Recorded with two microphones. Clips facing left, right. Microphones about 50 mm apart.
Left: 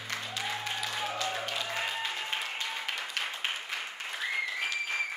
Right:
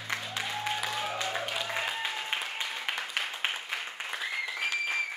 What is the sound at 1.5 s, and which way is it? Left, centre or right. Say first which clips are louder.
Applause: right 1 dB; centre.